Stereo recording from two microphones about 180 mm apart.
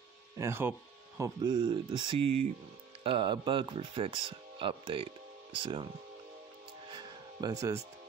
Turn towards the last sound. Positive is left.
turn(degrees=-20)  # may be behind; listen again after turning